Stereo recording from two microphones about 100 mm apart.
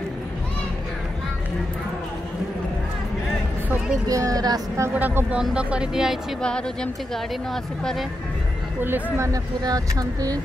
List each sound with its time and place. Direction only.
3.7 s speech: 10° right (ahead or behind)
4.1 s speech: 35° right (ahead or behind)
4.9 s speech: 15° right (ahead or behind)
6.4 s speech: 10° left (ahead or behind)
8.8 s speech: 20° right (ahead or behind)
9.3 s speech: 40° right (ahead or behind)